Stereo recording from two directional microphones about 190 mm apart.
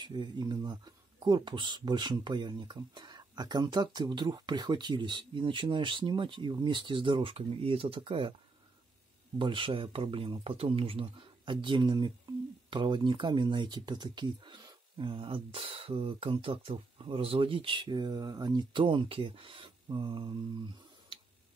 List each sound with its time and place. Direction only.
0.0 s speech: 25° right (ahead or behind)
9.4 s speech: 25° right (ahead or behind)